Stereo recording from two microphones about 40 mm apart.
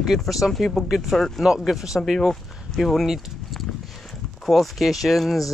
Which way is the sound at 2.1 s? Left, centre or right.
Centre.